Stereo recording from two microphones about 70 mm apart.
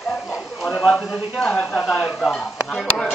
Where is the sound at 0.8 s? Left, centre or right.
Centre.